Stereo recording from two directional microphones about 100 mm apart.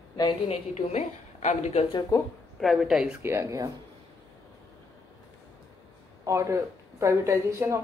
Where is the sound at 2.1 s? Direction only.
35° left (ahead or behind).